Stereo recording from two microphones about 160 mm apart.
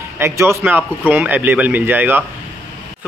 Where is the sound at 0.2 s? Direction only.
15° right (ahead or behind).